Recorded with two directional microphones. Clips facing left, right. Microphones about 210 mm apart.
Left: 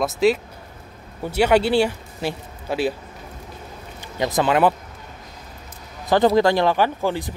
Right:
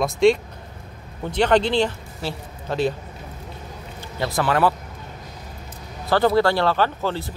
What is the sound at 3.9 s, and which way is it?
Speech, 15° left (ahead or behind).